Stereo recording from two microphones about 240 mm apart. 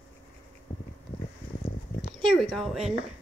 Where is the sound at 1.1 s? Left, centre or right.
Centre.